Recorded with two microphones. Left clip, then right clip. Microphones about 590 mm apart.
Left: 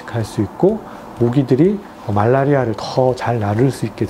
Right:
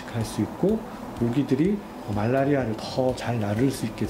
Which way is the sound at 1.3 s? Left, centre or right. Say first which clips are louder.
Left 9 dB; left.